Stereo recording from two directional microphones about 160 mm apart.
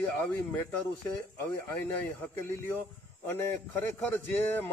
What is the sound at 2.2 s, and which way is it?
A man's voice, 15° left (ahead or behind).